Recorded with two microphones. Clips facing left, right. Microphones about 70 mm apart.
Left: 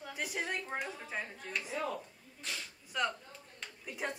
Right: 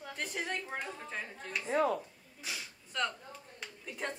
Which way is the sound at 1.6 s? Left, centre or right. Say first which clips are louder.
Right 9 dB; right.